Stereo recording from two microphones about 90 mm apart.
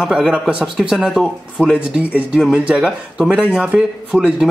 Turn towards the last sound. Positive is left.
turn(degrees=-10)  # may be behind; listen again after turning